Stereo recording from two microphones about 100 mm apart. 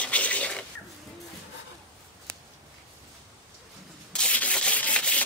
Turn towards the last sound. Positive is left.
turn(degrees=10)  # may be behind; listen again after turning